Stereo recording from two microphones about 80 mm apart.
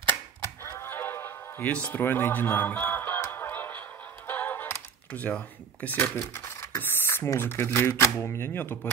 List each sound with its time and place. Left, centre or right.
0.0 s music: left
1.7 s speech: centre
3.3 s music: left
6.1 s speech: left
6.8 s a sound: left
7.3 s speech: left